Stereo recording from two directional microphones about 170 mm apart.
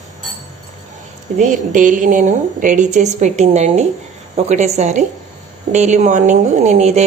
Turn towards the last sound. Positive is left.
turn(degrees=-40)  # may be behind; listen again after turning